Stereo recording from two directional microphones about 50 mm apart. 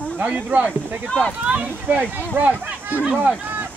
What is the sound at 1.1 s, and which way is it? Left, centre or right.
Speech, centre.